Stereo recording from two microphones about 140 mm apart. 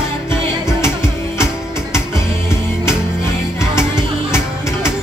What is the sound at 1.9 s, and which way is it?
Music, 20° left (ahead or behind).